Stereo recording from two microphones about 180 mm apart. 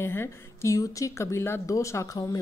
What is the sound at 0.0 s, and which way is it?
A woman's voice, 15° left (ahead or behind).